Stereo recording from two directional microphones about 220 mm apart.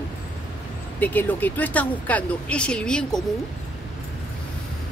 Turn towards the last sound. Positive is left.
turn(degrees=5)  # may be behind; listen again after turning